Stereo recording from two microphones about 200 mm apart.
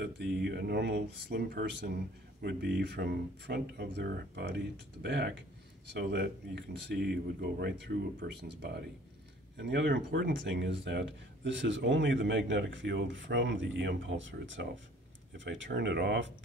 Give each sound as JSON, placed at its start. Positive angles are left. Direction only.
{"t": 0.0, "sound": "speech", "side_deg": -55}